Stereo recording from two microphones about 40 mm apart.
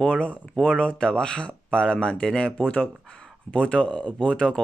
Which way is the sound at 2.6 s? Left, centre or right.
Left.